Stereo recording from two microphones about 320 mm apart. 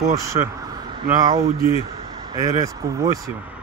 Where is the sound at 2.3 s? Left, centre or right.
Centre.